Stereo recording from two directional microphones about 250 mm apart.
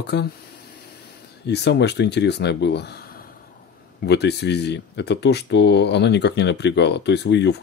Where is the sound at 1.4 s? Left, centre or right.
Left.